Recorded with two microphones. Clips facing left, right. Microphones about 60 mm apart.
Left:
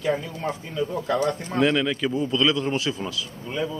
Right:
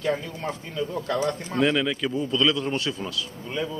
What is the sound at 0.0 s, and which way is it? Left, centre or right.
A man's voice, centre.